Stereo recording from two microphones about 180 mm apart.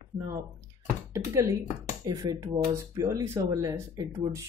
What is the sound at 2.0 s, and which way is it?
Speech, 20° right (ahead or behind).